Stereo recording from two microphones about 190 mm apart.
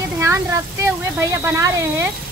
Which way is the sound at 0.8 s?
15° right (ahead or behind).